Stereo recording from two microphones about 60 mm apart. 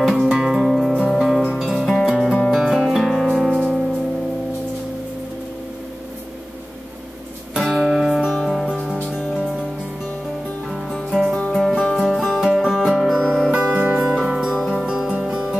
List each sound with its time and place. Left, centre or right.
0.0 s music: centre
1.9 s music: centre
7.6 s music: centre
8.4 s music: centre
11.0 s music: centre
13.1 s music: centre
13.5 s music: centre